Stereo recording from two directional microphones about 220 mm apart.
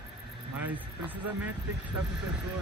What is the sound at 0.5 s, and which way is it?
Speech, 5° right (ahead or behind).